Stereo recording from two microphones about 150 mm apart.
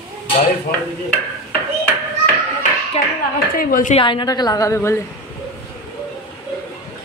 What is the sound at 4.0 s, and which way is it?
A woman's voice, 35° left (ahead or behind).